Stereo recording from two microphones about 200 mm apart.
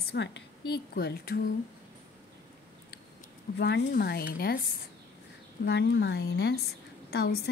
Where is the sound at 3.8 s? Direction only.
45° left (ahead or behind).